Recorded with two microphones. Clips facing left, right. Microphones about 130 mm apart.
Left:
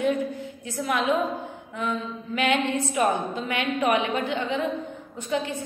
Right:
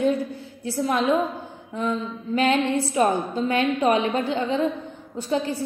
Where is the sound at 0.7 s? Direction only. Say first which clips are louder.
Right 3 dB; 30° right (ahead or behind).